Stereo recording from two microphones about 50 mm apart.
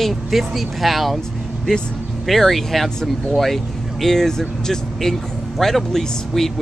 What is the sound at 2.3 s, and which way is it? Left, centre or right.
Speech, centre.